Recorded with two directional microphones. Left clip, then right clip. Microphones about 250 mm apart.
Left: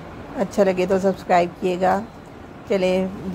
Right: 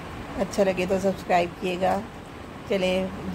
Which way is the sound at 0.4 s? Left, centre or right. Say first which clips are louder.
Left 5 dB; centre.